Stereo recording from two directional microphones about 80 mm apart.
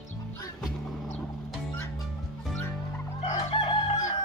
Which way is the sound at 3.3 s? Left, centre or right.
Left.